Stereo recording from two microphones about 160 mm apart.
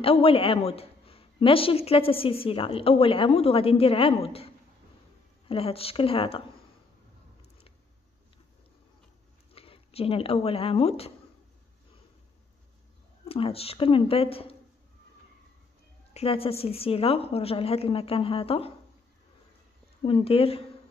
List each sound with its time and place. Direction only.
0.0 s a woman's voice: 35° left (ahead or behind)
5.5 s a woman's voice: 35° left (ahead or behind)
9.5 s speech: 35° left (ahead or behind)
13.2 s a woman's voice: 35° left (ahead or behind)
16.1 s a woman's voice: 40° left (ahead or behind)
20.0 s a woman's voice: 35° left (ahead or behind)